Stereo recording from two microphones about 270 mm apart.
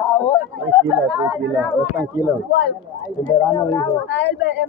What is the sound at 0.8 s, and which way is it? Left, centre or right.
Speech, centre.